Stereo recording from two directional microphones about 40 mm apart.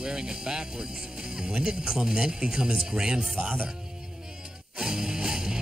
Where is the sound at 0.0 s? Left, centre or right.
Centre.